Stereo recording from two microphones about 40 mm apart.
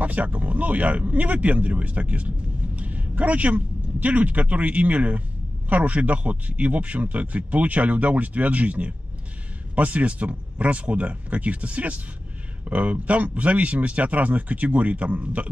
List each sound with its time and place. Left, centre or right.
0.0 s speech: right